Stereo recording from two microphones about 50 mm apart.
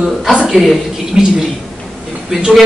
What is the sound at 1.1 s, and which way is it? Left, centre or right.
Speech, centre.